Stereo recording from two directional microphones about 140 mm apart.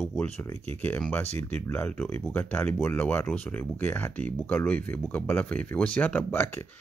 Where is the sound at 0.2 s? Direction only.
10° left (ahead or behind).